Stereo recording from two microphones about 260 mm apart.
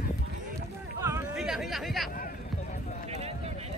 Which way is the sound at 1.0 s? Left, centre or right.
Centre.